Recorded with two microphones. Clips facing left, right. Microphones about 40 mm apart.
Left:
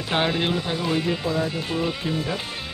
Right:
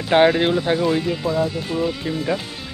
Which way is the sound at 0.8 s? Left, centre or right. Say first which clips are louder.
Right 3 dB; centre.